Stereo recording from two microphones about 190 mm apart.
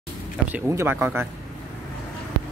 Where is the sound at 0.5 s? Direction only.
10° right (ahead or behind).